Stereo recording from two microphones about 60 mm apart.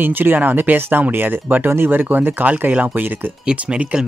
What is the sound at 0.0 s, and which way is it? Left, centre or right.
Speech, right.